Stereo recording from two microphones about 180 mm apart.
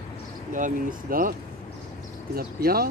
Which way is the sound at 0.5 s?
45° right (ahead or behind).